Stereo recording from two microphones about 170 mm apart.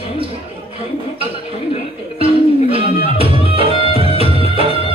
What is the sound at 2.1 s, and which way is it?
Speech, 35° right (ahead or behind).